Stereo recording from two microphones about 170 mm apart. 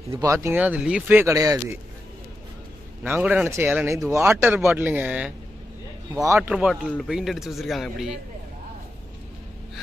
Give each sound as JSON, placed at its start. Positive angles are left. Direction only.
{"t": 0.1, "sound": "speech", "side_deg": -15}
{"t": 3.0, "sound": "speech", "side_deg": -10}
{"t": 6.5, "sound": "a man's voice", "side_deg": -5}